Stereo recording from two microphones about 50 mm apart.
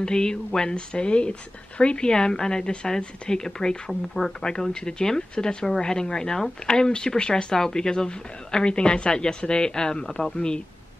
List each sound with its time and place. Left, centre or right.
0.0 s speech: centre